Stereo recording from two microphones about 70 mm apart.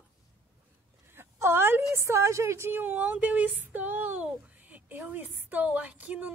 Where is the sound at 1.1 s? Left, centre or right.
Right.